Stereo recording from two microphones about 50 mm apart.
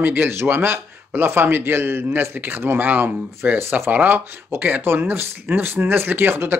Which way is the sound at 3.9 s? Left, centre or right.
Right.